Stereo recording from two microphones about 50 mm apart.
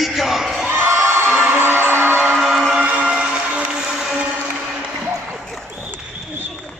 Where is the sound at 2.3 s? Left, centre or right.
Centre.